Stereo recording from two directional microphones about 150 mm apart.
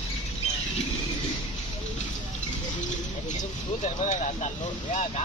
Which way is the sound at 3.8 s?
50° left (ahead or behind).